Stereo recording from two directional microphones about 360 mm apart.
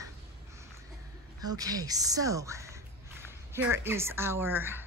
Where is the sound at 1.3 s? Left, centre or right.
Centre.